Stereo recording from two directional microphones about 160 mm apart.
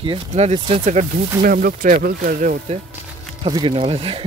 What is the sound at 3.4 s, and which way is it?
Speech, 30° right (ahead or behind).